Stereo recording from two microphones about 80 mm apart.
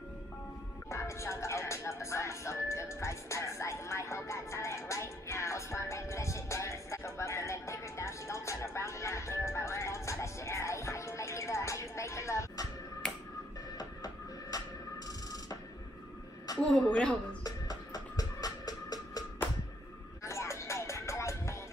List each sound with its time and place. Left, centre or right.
0.8 s music: left
13.0 s finger snapping: centre
13.7 s music: left
16.5 s speech: centre
17.4 s music: left
20.2 s music: left